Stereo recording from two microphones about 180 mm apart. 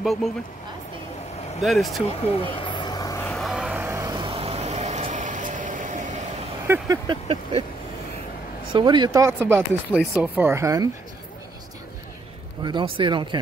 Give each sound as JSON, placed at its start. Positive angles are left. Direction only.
{"t": 0.0, "sound": "speech", "side_deg": 0}
{"t": 1.6, "sound": "speech", "side_deg": 0}
{"t": 2.4, "sound": "vehicle", "side_deg": 25}
{"t": 3.3, "sound": "a sound", "side_deg": 0}
{"t": 4.1, "sound": "vehicle", "side_deg": -25}
{"t": 6.7, "sound": "speech", "side_deg": -20}
{"t": 8.7, "sound": "speech", "side_deg": -25}
{"t": 12.6, "sound": "speech", "side_deg": -25}